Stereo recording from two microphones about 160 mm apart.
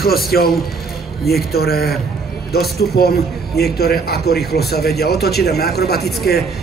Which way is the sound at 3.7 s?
80° left.